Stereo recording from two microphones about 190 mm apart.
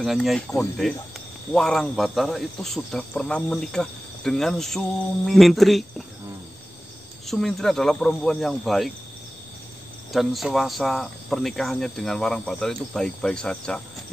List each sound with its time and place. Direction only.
0.0 s speech: centre (ahead or behind)
7.2 s speech: centre (ahead or behind)
10.1 s speech: centre (ahead or behind)